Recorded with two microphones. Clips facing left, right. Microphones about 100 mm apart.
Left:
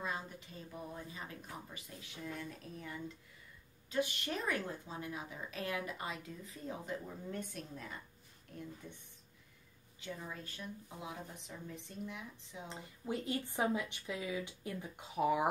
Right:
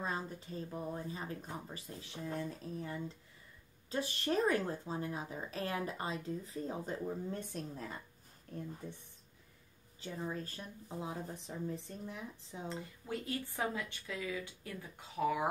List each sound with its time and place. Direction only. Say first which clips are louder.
0.0 s speech: right 2 dB; 35° right (ahead or behind)
9.9 s speech: right 5 dB; 35° right (ahead or behind)
12.6 s speech: even; 20° left (ahead or behind)